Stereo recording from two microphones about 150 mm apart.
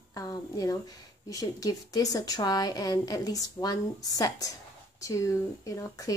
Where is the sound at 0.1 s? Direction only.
25° left (ahead or behind).